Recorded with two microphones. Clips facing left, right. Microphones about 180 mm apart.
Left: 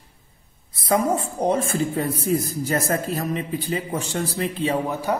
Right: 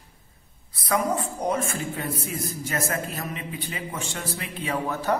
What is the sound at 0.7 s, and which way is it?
Speech, 25° left (ahead or behind).